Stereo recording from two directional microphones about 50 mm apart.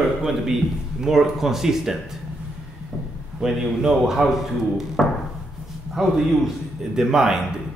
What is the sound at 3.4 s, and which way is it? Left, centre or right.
Speech, centre.